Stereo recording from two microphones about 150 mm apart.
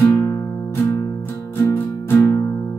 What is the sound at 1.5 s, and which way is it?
Music, 15° left (ahead or behind).